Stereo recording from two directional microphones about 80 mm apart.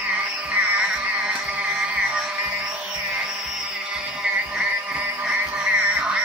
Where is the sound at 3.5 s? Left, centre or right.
Centre.